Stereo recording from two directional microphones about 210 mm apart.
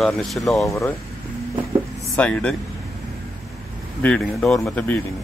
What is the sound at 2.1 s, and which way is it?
Speech, 5° left (ahead or behind).